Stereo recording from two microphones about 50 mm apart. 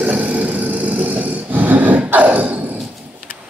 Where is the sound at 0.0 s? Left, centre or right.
Right.